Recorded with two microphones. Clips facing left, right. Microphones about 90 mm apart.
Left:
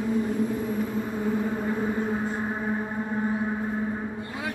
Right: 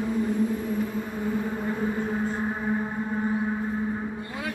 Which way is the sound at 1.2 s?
5° left (ahead or behind).